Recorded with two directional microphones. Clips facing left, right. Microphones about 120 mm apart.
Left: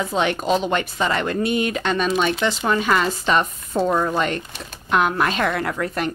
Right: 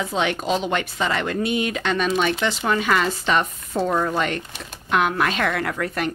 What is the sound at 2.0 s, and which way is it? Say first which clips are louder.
A woman's voice: left 1 dB; 30° left (ahead or behind).